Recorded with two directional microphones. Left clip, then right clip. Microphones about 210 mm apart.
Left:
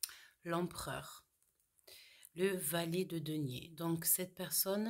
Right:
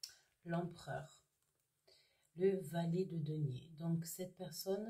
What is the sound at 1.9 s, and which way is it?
Speech, 45° left (ahead or behind).